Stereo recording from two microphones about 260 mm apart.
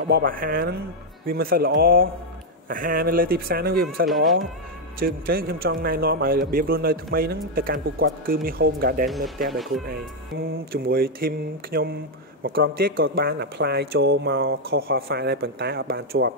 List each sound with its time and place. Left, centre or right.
0.1 s a man's voice: right
4.1 s speech: centre
4.9 s a man's voice: right
9.5 s speech: centre
9.8 s a man's voice: right